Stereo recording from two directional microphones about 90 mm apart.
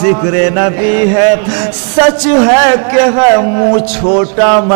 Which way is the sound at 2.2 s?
15° right (ahead or behind).